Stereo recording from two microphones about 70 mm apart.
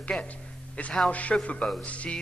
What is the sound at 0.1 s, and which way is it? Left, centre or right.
Speech, centre.